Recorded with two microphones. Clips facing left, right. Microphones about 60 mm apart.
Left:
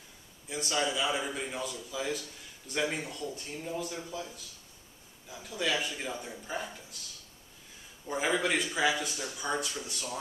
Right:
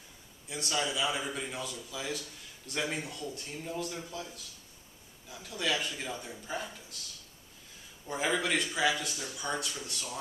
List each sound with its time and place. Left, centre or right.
0.5 s a man's voice: centre
5.3 s a man's voice: centre
8.1 s a man's voice: centre
9.1 s speech: left
9.4 s a man's voice: centre